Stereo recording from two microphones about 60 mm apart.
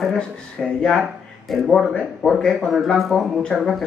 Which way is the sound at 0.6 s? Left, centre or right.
Centre.